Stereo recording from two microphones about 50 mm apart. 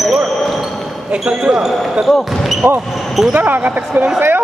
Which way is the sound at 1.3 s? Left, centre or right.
Right.